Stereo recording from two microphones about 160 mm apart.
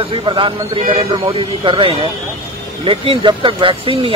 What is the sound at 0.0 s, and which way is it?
Speech, 30° right (ahead or behind).